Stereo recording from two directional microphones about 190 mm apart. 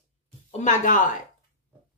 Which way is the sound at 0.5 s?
40° left (ahead or behind).